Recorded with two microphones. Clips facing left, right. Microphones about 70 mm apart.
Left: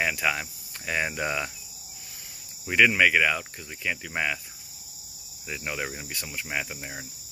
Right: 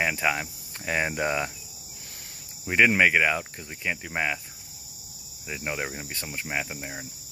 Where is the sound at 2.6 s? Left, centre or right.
Right.